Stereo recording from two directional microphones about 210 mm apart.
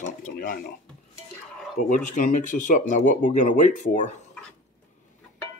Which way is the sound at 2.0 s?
35° left (ahead or behind).